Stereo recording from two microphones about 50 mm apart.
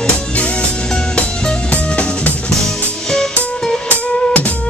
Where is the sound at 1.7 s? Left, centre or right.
Left.